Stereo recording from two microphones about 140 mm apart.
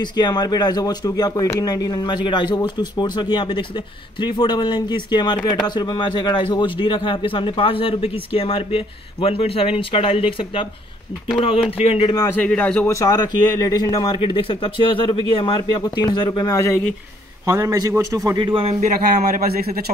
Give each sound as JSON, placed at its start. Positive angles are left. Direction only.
{"t": 0.0, "sound": "speech", "side_deg": 30}
{"t": 12.4, "sound": "speech", "side_deg": 10}
{"t": 12.9, "sound": "speech", "side_deg": 25}
{"t": 17.5, "sound": "a man's voice", "side_deg": -25}
{"t": 18.5, "sound": "a man's voice", "side_deg": -45}
{"t": 18.9, "sound": "a man's voice", "side_deg": -65}